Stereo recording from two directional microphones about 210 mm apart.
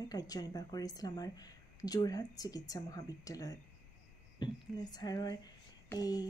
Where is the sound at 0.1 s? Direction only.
20° left (ahead or behind).